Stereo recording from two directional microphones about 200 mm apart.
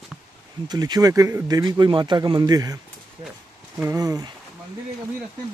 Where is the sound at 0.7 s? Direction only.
20° right (ahead or behind).